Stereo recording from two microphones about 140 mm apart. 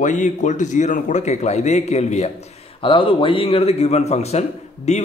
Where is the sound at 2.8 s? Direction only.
35° left (ahead or behind).